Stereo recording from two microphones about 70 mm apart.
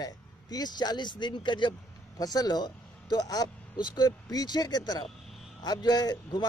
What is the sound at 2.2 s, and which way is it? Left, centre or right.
Speech, left.